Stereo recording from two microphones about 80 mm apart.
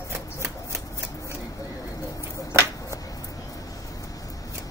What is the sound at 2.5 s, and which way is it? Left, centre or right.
Finger snapping, right.